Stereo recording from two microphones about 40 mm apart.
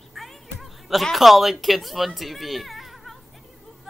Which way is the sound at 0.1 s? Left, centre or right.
Centre.